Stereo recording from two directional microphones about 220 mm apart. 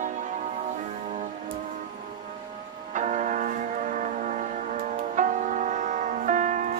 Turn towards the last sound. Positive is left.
turn(degrees=-35)  # may be behind; listen again after turning